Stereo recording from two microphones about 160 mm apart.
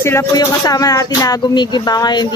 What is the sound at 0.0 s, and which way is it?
Speech, 15° left (ahead or behind).